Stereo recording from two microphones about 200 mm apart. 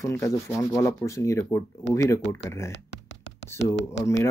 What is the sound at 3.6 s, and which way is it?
Speech, 60° left (ahead or behind).